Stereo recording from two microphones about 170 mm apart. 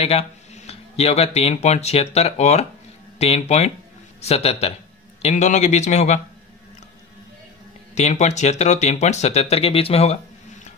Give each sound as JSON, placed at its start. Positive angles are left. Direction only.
{"t": 0.0, "sound": "a man's voice", "side_deg": 35}
{"t": 7.9, "sound": "speech", "side_deg": 45}